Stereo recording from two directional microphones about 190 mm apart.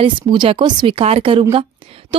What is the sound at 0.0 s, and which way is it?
A woman's voice, 25° right (ahead or behind).